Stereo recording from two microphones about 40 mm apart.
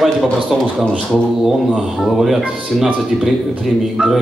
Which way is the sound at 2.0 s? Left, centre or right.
Centre.